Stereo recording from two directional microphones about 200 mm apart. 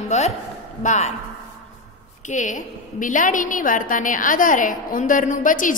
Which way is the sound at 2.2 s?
40° left (ahead or behind).